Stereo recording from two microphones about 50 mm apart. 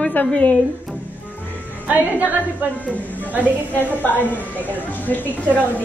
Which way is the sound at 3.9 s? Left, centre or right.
Left.